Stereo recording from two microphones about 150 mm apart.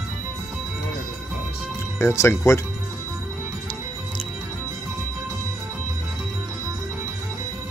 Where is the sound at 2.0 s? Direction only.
20° left (ahead or behind).